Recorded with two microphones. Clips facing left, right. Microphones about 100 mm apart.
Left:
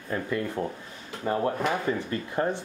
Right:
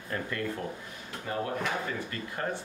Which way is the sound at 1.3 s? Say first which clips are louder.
Left 7 dB; 35° left (ahead or behind).